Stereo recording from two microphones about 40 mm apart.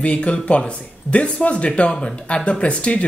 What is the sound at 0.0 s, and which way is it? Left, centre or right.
A woman's voice, left.